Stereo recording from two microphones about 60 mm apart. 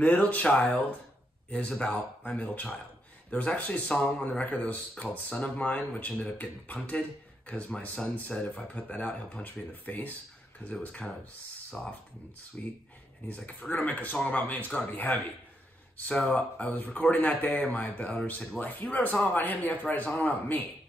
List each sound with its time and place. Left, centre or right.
0.0 s speech: left
16.2 s speech: left